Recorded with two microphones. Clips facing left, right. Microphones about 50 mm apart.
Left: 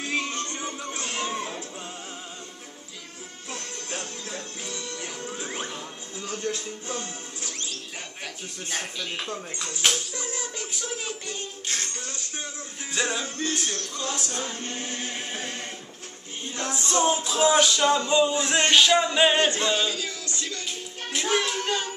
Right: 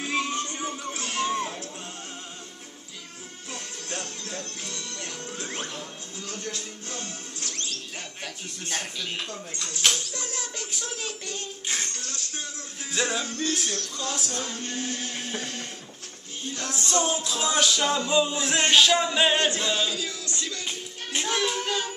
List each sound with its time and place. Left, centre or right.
0.0 s music: centre
3.5 s music: centre
8.6 s speech: centre
9.1 s speech: centre
11.6 s music: centre
11.9 s music: centre
12.9 s speech: centre
14.1 s music: centre
14.4 s speech: centre
16.8 s music: left
17.6 s music: centre
21.2 s child singing: centre